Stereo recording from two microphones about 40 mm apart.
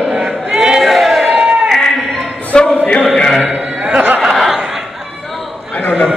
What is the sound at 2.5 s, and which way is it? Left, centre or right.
Music, centre.